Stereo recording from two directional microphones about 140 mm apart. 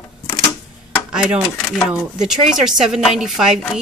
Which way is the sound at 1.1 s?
5° right (ahead or behind).